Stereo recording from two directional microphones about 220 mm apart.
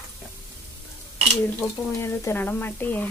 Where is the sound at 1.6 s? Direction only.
10° left (ahead or behind).